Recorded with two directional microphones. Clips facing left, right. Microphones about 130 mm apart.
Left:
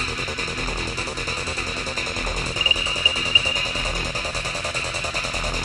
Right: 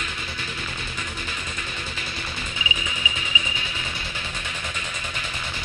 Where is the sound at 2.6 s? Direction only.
35° left (ahead or behind).